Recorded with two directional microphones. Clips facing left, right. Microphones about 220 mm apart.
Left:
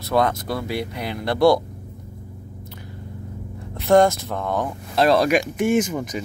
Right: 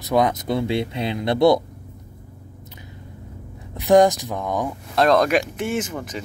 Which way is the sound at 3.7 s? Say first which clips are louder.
Right 1 dB; 15° right (ahead or behind).